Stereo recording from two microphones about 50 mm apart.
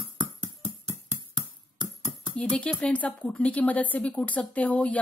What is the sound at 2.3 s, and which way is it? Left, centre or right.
Speech, left.